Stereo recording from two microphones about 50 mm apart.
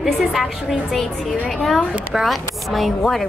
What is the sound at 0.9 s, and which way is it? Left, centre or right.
Speech, centre.